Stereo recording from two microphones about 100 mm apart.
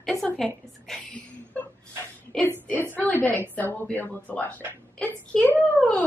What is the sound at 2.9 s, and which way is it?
Speech, 15° left (ahead or behind).